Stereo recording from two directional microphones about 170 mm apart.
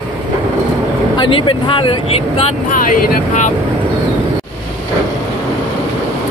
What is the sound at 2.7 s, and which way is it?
Speech, 55° left (ahead or behind).